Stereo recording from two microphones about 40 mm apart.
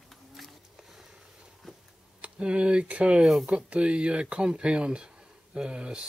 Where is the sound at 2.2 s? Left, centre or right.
Right.